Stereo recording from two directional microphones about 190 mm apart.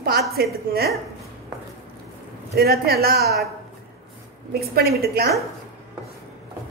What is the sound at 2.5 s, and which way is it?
Speech, 55° right (ahead or behind).